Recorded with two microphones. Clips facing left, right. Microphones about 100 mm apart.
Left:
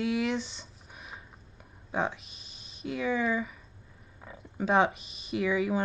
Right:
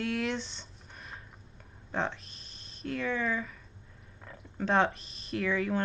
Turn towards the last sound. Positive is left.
turn(degrees=10)  # may be behind; listen again after turning